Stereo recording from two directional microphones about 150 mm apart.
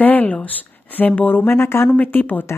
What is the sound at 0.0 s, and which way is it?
Speech, 10° left (ahead or behind).